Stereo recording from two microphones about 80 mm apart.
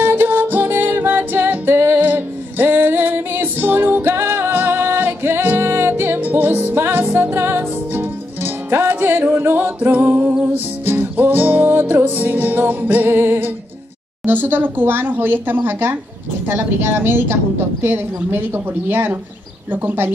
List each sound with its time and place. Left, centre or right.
0.0 s music: right
14.2 s speech: right